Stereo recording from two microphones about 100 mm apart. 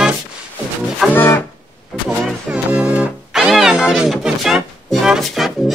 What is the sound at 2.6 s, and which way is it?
Music, 15° right (ahead or behind).